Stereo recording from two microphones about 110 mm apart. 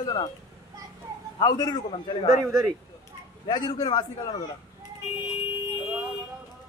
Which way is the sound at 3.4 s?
40° left (ahead or behind).